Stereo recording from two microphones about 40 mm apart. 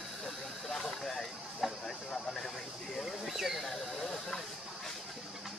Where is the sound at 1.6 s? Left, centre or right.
Centre.